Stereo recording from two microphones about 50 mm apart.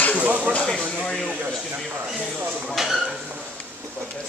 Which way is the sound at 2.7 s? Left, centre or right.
Centre.